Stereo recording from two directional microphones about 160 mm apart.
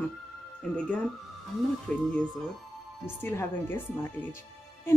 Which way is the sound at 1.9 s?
5° left (ahead or behind).